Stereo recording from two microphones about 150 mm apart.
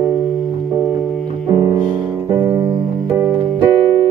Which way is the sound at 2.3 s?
25° right (ahead or behind).